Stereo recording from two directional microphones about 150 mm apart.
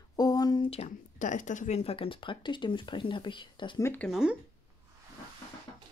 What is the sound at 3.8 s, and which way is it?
Speech, 10° left (ahead or behind).